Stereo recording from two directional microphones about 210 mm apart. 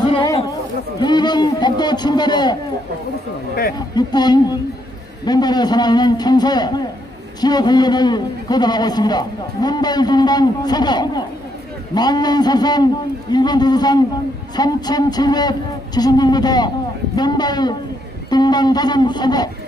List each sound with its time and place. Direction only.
0.0 s a man's voice: 20° left (ahead or behind)
3.9 s a man's voice: 20° left (ahead or behind)